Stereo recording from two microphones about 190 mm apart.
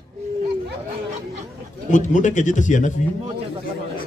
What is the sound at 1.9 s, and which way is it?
A man's voice, 40° left (ahead or behind).